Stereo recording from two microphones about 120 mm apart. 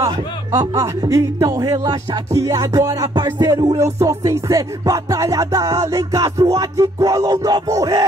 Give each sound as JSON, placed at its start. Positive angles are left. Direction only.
{"t": 0.0, "sound": "speech", "side_deg": -25}